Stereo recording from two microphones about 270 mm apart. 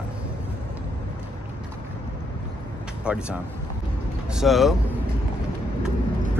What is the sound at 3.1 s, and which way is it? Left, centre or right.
Speech, centre.